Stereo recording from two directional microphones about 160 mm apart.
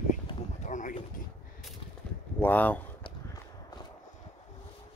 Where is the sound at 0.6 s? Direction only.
50° left (ahead or behind).